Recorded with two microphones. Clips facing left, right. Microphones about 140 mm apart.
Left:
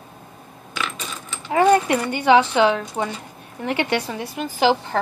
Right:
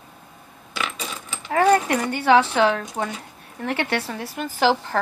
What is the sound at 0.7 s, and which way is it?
Coin, 5° right (ahead or behind).